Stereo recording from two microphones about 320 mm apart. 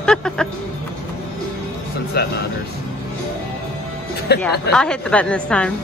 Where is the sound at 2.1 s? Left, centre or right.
Left.